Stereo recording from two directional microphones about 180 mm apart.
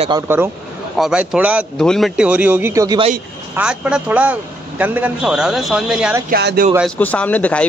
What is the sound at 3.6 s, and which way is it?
Speech, 5° right (ahead or behind).